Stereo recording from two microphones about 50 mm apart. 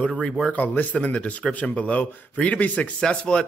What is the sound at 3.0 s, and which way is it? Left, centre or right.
Speech, centre.